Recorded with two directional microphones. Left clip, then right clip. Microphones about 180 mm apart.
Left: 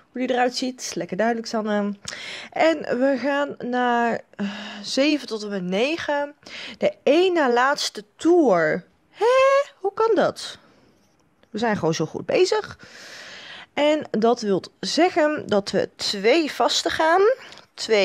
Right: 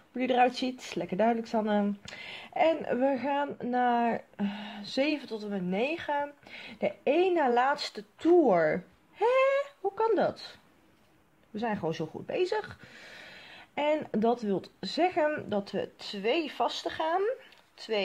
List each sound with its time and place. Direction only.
0.1 s speech: 35° left (ahead or behind); by 18.0 s 60° left (ahead or behind)